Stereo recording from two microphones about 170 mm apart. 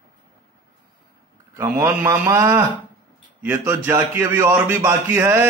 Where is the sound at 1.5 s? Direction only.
15° right (ahead or behind).